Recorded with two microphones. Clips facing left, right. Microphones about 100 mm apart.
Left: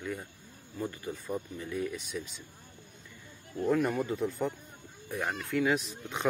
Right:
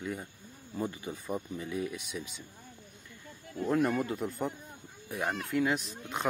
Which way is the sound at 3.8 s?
Centre (ahead or behind).